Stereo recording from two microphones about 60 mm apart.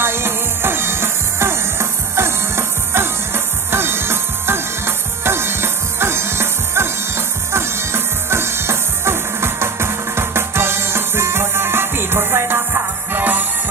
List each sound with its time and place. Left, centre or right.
0.0 s music: right